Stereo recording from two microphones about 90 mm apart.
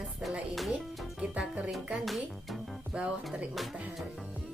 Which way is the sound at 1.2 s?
15° right (ahead or behind).